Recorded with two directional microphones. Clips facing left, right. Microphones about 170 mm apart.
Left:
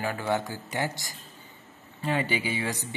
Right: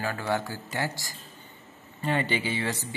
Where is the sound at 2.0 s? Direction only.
5° left (ahead or behind).